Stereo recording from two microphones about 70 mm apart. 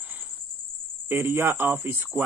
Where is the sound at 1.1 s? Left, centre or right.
Right.